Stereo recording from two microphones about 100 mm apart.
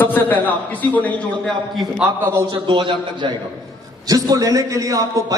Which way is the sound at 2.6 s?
55° right (ahead or behind).